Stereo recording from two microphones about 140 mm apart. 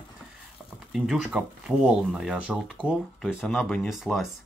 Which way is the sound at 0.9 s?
5° right (ahead or behind).